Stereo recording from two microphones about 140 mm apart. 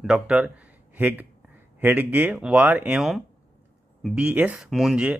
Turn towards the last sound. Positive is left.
turn(degrees=-10)  # may be behind; listen again after turning